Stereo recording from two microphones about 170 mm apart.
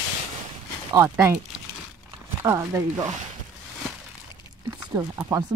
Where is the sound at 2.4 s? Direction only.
20° right (ahead or behind).